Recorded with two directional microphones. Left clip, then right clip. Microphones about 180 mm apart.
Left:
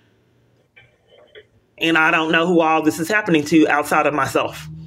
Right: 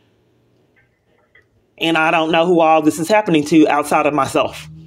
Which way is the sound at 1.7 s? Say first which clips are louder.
Right 1 dB; 30° right (ahead or behind).